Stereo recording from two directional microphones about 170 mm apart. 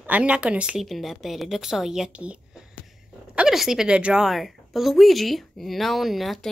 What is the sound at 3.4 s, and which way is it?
A woman's voice, centre (ahead or behind).